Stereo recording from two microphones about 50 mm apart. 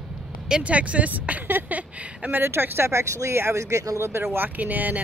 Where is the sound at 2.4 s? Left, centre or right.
Right.